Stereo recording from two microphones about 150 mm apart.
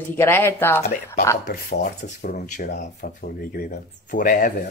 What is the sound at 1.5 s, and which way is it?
Speech, 90° left.